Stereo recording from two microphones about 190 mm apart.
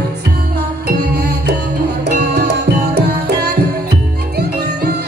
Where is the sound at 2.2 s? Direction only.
60° right (ahead or behind).